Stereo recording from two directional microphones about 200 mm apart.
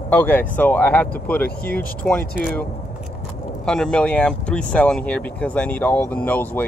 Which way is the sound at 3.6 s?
5° left (ahead or behind).